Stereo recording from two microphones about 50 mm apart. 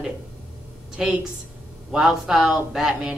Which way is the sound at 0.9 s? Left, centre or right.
Centre.